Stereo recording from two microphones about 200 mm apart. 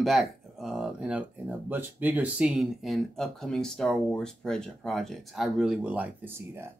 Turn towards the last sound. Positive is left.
turn(degrees=-10)  # may be behind; listen again after turning